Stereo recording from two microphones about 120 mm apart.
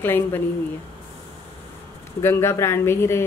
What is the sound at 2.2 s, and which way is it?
Speech, 20° left (ahead or behind).